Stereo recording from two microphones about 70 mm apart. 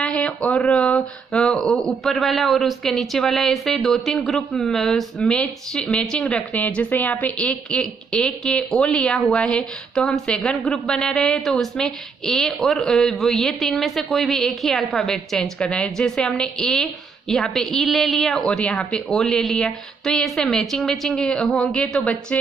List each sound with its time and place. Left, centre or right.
0.0 s a sound: centre
0.5 s a woman's voice: centre
6.1 s a woman's voice: centre